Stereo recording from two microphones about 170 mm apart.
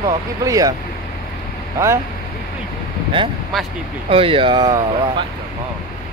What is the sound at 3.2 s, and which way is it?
Speech, 30° right (ahead or behind).